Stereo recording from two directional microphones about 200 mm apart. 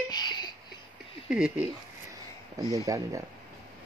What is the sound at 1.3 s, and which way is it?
Speech, 5° right (ahead or behind).